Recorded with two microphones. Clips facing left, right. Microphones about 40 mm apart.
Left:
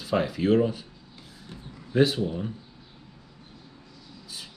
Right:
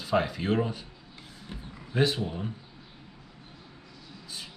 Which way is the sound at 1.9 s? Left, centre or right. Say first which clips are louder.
Left 4 dB; centre.